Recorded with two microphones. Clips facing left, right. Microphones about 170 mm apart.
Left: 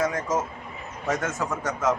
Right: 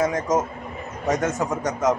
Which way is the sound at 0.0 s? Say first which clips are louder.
Right 4 dB; 15° right (ahead or behind).